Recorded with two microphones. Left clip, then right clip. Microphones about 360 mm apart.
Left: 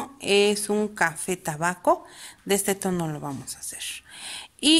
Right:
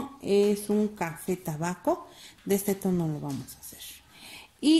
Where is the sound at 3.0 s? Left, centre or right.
Left.